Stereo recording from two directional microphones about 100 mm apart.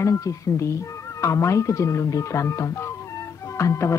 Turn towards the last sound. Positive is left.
turn(degrees=30)  # may be behind; listen again after turning